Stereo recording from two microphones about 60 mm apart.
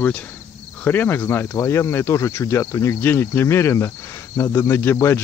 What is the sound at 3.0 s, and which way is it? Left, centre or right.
Speech, left.